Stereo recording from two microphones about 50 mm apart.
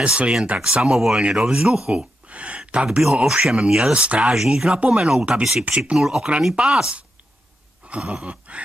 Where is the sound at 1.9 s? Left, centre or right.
Right.